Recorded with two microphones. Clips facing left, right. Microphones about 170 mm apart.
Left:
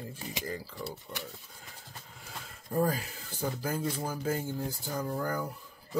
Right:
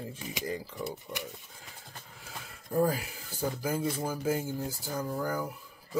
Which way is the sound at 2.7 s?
10° right (ahead or behind).